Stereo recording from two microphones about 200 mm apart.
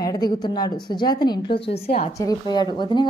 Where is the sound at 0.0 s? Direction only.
20° left (ahead or behind).